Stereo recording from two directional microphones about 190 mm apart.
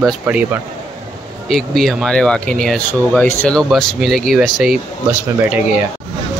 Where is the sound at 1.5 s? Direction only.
Centre (ahead or behind).